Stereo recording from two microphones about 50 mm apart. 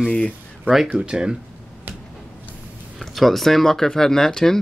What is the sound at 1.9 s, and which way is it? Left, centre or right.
Finger snapping, right.